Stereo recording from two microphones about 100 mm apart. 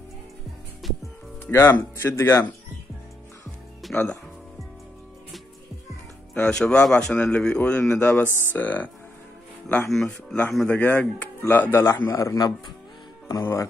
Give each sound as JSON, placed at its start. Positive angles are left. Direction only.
{"t": 0.8, "sound": "music", "side_deg": 0}
{"t": 1.4, "sound": "speech", "side_deg": 25}
{"t": 3.9, "sound": "a man's voice", "side_deg": 20}
{"t": 6.3, "sound": "a man's voice", "side_deg": 10}
{"t": 8.3, "sound": "speech", "side_deg": -25}
{"t": 8.5, "sound": "a man's voice", "side_deg": 15}
{"t": 9.8, "sound": "a man's voice", "side_deg": 5}